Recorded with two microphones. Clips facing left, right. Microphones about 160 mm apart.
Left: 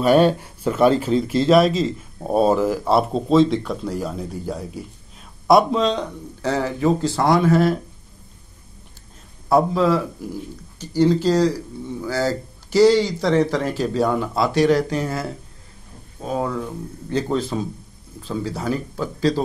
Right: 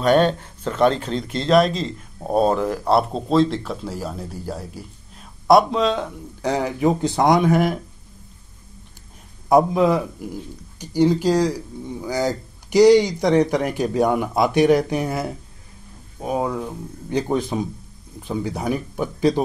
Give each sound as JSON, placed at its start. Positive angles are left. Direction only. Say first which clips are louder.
{"t": 0.0, "sound": "speech", "louder": "left 2 dB", "side_deg": 5}
{"t": 6.4, "sound": "speech", "louder": "even", "side_deg": -15}
{"t": 9.5, "sound": "speech", "louder": "right 1 dB", "side_deg": -15}